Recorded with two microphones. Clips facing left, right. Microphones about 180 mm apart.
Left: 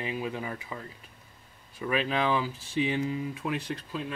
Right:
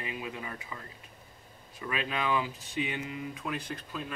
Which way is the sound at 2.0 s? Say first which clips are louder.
Left 3 dB; 30° left (ahead or behind).